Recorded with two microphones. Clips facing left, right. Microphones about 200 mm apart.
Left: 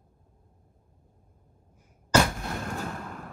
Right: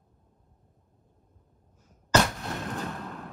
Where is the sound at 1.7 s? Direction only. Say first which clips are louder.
Even; 10° left (ahead or behind).